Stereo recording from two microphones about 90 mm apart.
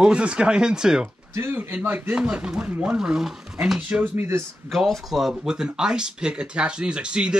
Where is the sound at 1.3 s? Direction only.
25° right (ahead or behind); by 4.0 s 5° right (ahead or behind).